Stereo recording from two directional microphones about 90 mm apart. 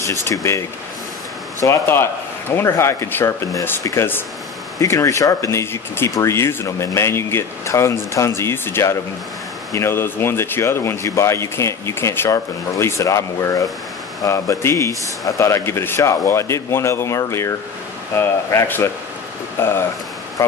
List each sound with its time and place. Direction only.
0.0 s speech: 35° left (ahead or behind)